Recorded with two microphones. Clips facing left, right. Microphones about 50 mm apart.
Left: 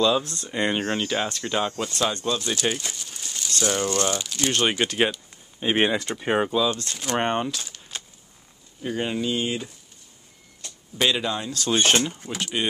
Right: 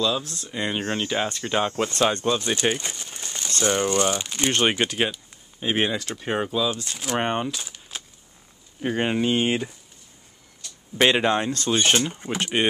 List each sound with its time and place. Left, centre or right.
0.0 s speech: centre
1.0 s speech: centre
1.9 s speech: right
2.2 s speech: right
5.6 s speech: centre
6.6 s speech: centre
7.5 s a sound: centre
8.8 s speech: right
11.0 s speech: right
12.1 s speech: centre